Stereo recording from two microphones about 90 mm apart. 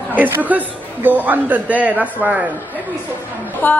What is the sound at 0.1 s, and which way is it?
A man's voice, 20° right (ahead or behind).